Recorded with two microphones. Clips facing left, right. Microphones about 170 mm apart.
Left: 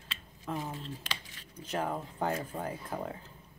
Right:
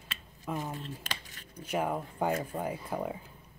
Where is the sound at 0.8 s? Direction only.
50° right (ahead or behind).